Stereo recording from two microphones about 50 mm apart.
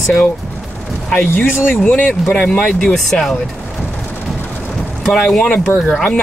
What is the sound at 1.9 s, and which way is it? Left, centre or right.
Speech, left.